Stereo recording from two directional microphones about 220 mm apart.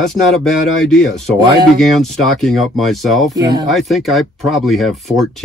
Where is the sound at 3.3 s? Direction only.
15° right (ahead or behind).